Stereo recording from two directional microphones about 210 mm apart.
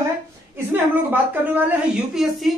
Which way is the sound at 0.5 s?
10° right (ahead or behind).